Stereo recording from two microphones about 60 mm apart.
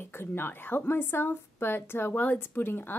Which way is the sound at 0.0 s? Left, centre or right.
Left.